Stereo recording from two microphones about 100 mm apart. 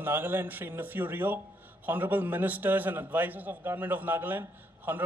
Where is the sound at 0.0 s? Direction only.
20° right (ahead or behind).